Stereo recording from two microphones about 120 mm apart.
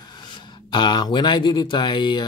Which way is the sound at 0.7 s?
40° left (ahead or behind).